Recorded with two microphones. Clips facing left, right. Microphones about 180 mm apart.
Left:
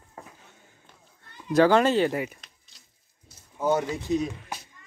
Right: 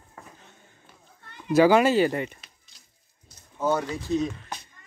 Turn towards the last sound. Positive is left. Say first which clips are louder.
# even
turn(degrees=10)  # may be behind; listen again after turning